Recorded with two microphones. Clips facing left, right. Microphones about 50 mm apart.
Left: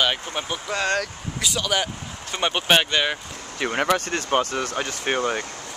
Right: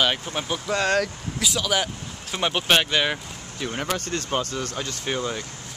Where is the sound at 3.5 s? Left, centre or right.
Left.